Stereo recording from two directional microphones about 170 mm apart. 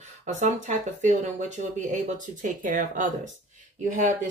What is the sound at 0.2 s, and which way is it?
Speech, 45° right (ahead or behind).